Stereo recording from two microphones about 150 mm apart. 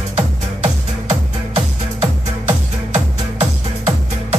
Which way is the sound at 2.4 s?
50° right (ahead or behind).